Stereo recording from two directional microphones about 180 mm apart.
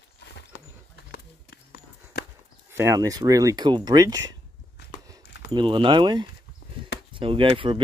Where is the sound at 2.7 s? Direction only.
15° right (ahead or behind).